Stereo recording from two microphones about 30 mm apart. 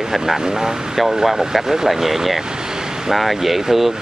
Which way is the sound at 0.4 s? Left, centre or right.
Right.